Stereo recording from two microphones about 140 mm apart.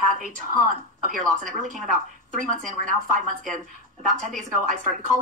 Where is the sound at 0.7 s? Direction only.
70° right (ahead or behind).